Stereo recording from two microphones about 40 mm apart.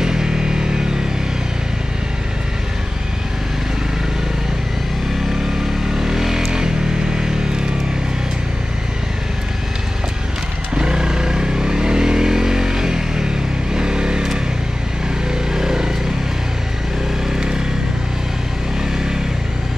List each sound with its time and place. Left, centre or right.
0.0 s music: centre
5.9 s a sound: centre
10.7 s vehicle: right
15.5 s vehicle: centre